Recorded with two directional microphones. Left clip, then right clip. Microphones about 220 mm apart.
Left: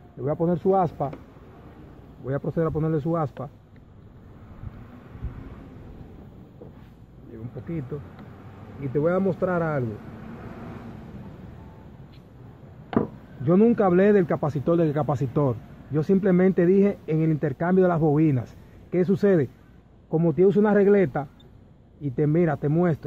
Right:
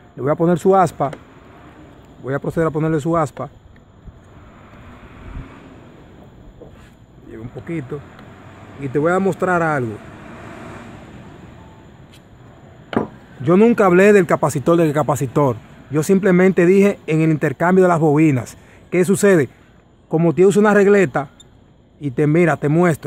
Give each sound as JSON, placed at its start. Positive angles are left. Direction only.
{"t": 0.2, "sound": "speech", "side_deg": -40}
{"t": 2.2, "sound": "speech", "side_deg": -30}
{"t": 7.3, "sound": "speech", "side_deg": -35}
{"t": 13.4, "sound": "speech", "side_deg": -30}